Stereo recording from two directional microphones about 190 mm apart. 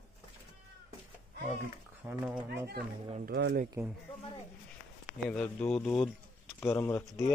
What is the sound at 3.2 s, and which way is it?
Speech, 55° right (ahead or behind).